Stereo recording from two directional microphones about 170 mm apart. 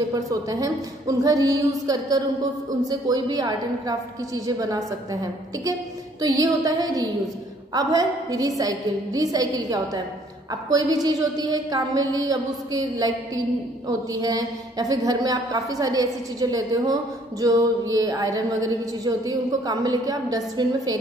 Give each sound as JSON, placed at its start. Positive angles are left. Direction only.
{"t": 0.1, "sound": "a woman's voice", "side_deg": -20}